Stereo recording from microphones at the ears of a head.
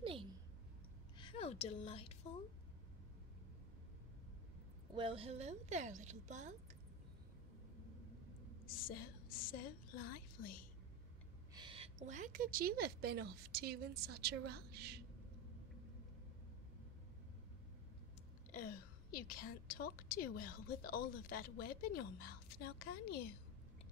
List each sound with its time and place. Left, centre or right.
1.2 s a woman's voice: left
5.3 s a woman's voice: right
8.6 s a sound: left
11.8 s a woman's voice: right
18.5 s a woman's voice: left